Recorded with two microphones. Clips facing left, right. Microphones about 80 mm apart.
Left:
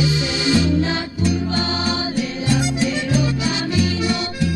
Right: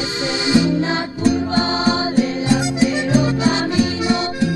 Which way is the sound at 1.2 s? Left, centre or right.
Right.